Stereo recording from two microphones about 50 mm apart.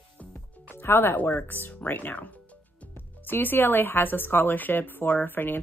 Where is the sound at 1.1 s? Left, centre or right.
Left.